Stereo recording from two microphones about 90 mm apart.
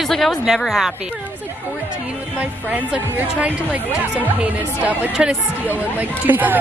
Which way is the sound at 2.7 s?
15° right (ahead or behind).